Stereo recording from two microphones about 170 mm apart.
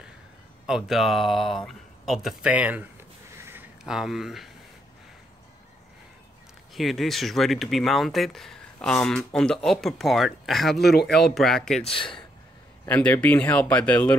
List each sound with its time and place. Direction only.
0.7 s speech: centre (ahead or behind)
6.7 s speech: centre (ahead or behind)
10.8 s speech: 70° left (ahead or behind)
11.3 s speech: 5° left (ahead or behind)
11.8 s speech: 30° left (ahead or behind)
12.8 s speech: 10° left (ahead or behind)